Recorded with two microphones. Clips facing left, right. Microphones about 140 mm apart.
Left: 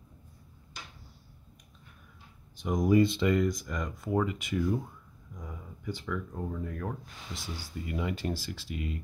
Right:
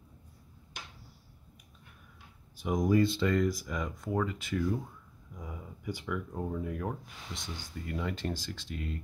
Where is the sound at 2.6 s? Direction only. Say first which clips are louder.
Left 1 dB; 5° right (ahead or behind).